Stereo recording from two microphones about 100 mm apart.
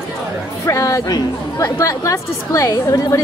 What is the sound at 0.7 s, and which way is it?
A woman's voice, 30° left (ahead or behind).